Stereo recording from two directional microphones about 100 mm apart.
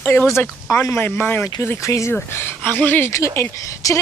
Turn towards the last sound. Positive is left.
turn(degrees=30)  # may be behind; listen again after turning